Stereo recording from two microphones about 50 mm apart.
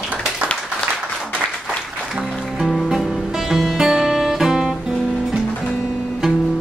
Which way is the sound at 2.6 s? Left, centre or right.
Centre.